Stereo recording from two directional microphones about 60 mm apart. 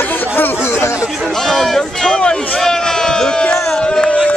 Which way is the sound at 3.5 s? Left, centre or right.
Centre.